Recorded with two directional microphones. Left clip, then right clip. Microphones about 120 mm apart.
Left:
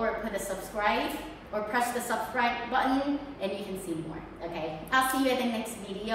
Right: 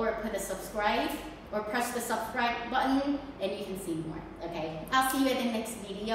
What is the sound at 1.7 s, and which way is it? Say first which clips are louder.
A woman's voice: left 4 dB; 5° left (ahead or behind).